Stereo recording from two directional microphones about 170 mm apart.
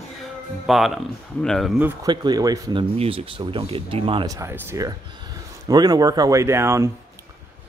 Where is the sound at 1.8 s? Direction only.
10° right (ahead or behind).